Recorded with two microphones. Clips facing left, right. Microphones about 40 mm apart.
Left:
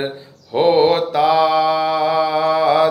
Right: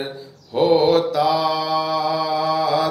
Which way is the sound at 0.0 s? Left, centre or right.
Left.